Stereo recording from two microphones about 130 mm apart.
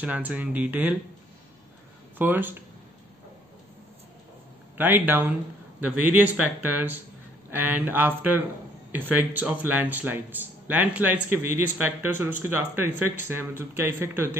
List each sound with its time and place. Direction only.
0.0 s speech: 10° right (ahead or behind)
2.1 s speech: 15° right (ahead or behind)
4.7 s speech: 15° right (ahead or behind)